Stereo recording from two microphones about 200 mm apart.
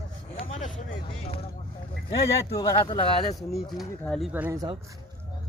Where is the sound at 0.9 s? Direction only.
30° left (ahead or behind).